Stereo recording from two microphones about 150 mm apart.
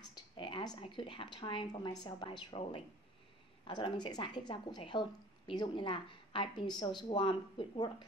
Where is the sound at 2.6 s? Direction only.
40° left (ahead or behind).